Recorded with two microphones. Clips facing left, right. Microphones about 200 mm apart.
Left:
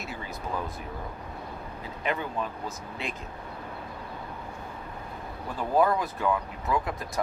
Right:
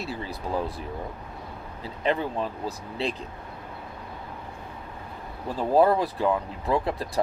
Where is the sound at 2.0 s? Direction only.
30° right (ahead or behind).